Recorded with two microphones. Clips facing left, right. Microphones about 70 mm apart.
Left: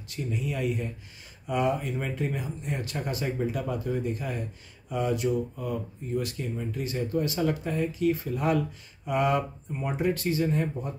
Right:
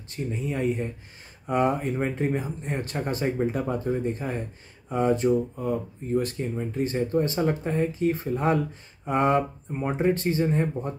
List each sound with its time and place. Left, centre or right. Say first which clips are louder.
0.1 s speech: right 2 dB; right